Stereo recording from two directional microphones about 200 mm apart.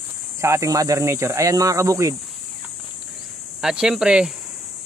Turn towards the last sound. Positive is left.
turn(degrees=-5)  # may be behind; listen again after turning